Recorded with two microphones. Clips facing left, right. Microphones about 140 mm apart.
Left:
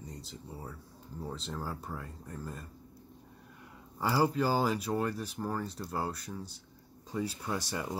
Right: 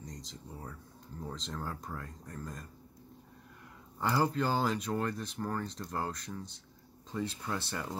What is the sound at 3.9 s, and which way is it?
Speech, 5° left (ahead or behind).